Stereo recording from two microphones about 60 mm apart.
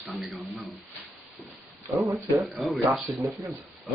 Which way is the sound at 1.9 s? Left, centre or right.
Right.